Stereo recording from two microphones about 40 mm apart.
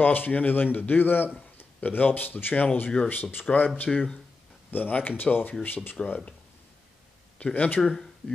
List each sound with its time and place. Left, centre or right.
0.0 s a man's voice: left
3.1 s speech: left
3.4 s a man's voice: left
6.0 s speech: left
7.5 s a man's voice: left
7.8 s speech: centre